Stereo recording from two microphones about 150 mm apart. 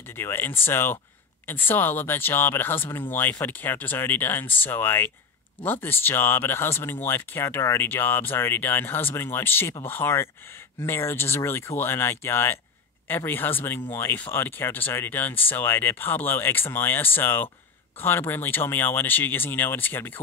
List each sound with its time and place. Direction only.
0.1 s speech: 15° left (ahead or behind)